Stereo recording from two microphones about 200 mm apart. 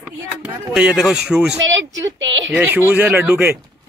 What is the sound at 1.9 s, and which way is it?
Speech, 70° right (ahead or behind).